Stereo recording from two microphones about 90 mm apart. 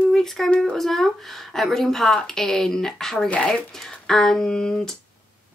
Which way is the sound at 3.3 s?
10° left (ahead or behind).